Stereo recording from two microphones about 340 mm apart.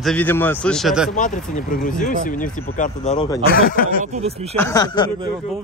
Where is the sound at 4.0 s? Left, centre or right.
Centre.